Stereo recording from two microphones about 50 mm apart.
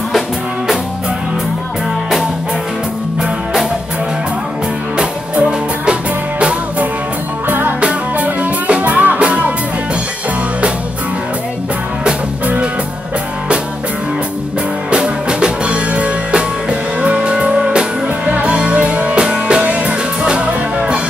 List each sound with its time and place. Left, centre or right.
4.9 s music: right
7.4 s music: right
8.2 s music: right
14.9 s music: centre